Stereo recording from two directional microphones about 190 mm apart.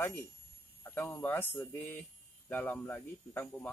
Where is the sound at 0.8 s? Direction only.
10° left (ahead or behind).